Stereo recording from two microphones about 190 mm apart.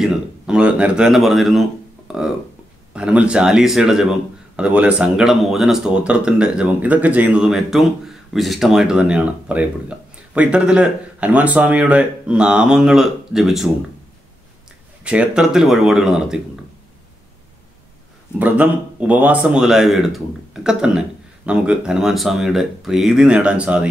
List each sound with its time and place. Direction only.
0.0 s speech: 5° right (ahead or behind)
2.1 s a sound: 5° right (ahead or behind)
2.9 s speech: 5° right (ahead or behind)
15.0 s speech: 5° right (ahead or behind)
18.4 s speech: 5° right (ahead or behind)